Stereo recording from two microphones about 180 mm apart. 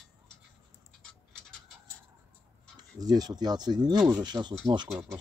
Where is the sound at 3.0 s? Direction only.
20° right (ahead or behind).